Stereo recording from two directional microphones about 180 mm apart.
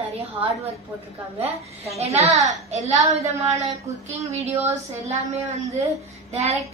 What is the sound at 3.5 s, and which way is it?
Speech, 15° right (ahead or behind).